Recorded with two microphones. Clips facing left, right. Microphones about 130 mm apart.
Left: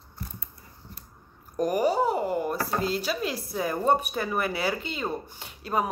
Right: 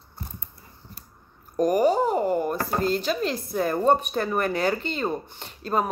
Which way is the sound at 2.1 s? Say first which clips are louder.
Right 3 dB; 45° right (ahead or behind).